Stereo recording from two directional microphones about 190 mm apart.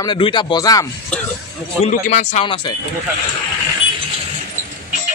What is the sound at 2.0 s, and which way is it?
Speech, 40° left (ahead or behind).